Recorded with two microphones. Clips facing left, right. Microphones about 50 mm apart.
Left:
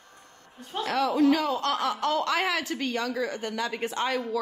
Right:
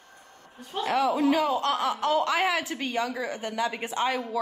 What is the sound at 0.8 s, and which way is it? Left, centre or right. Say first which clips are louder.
Speech: left 1 dB; centre.